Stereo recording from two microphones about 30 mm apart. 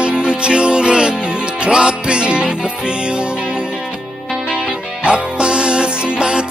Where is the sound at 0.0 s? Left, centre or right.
Right.